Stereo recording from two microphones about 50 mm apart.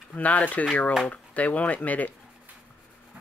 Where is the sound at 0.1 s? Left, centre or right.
Left.